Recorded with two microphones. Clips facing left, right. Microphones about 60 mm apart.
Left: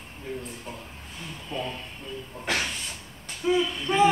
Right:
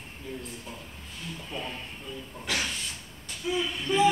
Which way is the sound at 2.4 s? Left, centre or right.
Left.